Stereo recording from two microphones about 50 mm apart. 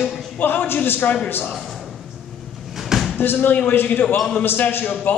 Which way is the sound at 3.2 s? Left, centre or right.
Left.